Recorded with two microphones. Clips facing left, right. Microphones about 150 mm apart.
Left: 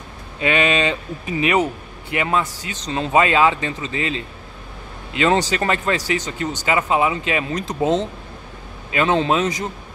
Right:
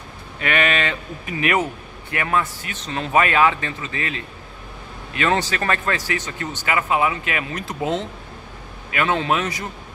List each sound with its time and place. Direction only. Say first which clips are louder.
0.4 s speech: left 3 dB; 20° left (ahead or behind)
8.9 s speech: left 3 dB; 25° left (ahead or behind)